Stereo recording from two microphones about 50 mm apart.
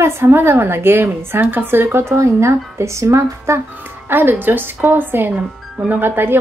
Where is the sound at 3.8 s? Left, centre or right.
Right.